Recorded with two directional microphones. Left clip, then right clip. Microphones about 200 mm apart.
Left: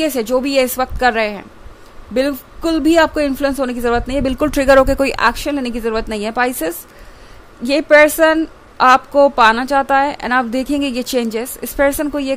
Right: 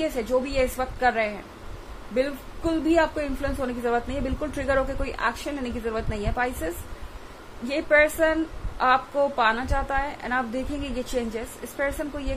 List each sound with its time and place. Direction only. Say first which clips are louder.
0.0 s a woman's voice: left 8 dB; 55° left (ahead or behind)